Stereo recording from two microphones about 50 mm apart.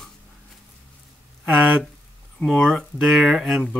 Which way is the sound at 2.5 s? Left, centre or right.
Centre.